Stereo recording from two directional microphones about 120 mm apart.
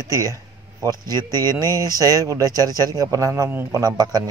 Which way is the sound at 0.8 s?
30° right (ahead or behind).